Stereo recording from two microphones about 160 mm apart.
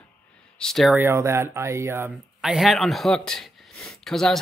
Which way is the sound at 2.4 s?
Centre (ahead or behind).